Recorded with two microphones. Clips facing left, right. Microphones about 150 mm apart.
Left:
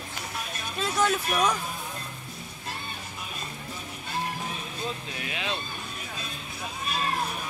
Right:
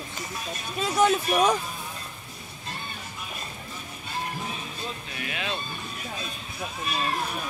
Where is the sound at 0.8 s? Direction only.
20° right (ahead or behind).